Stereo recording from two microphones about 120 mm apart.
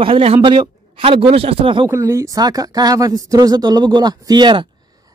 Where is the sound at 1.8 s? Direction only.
25° right (ahead or behind).